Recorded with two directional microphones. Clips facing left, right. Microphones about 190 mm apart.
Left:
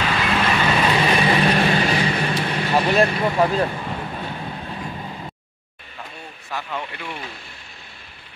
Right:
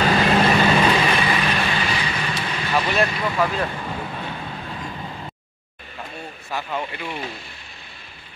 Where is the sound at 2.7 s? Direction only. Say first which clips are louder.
Left 3 dB; 30° left (ahead or behind).